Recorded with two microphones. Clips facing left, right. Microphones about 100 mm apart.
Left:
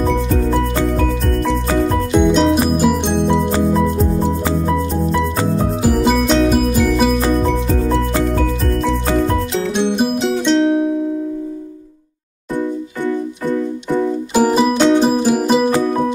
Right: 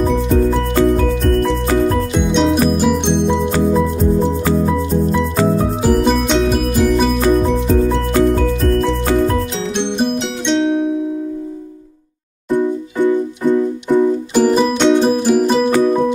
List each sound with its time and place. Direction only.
2.1 s music: centre (ahead or behind)
5.9 s music: 5° left (ahead or behind)
9.8 s music: 5° left (ahead or behind)
12.5 s music: 15° right (ahead or behind)
14.3 s music: 10° left (ahead or behind)